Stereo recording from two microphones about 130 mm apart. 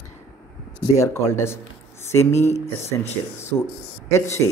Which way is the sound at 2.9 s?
25° left (ahead or behind).